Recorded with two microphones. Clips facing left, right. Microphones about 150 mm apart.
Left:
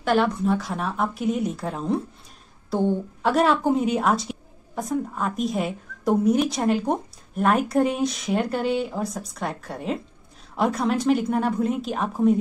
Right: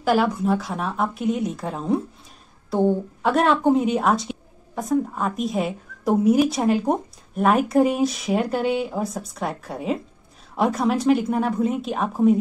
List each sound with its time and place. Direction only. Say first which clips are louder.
0.0 s a woman's voice: right 1 dB; 5° right (ahead or behind)
3.2 s a woman's voice: left 1 dB; centre (ahead or behind)